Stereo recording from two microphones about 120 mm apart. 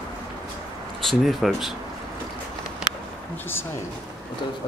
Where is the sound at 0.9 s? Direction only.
Centre (ahead or behind).